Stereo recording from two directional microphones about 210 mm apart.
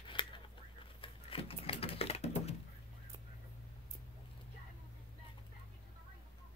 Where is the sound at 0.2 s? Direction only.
20° left (ahead or behind).